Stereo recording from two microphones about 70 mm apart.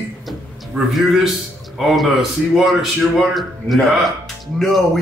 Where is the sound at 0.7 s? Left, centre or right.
Right.